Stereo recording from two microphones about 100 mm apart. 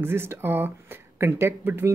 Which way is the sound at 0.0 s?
25° right (ahead or behind).